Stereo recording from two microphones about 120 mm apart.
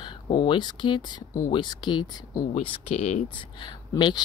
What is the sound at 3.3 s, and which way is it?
Speech, 40° left (ahead or behind).